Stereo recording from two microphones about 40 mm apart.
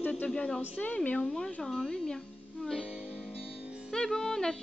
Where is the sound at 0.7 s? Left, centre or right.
Left.